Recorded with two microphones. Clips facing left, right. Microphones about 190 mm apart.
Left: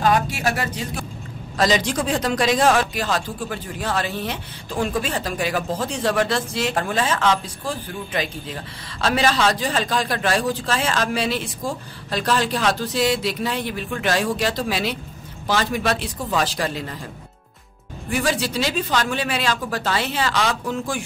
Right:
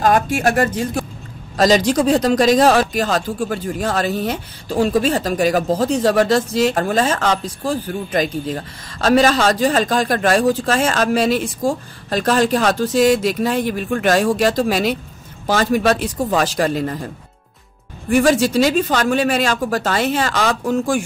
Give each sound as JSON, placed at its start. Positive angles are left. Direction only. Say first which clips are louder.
{"t": 0.0, "sound": "speech", "louder": "right 4 dB", "side_deg": -50}
{"t": 18.1, "sound": "speech", "louder": "right 9 dB", "side_deg": -45}